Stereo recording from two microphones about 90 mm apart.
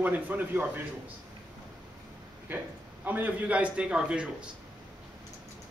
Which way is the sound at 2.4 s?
20° right (ahead or behind).